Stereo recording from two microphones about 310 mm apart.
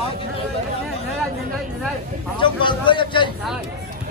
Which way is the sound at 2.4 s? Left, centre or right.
Centre.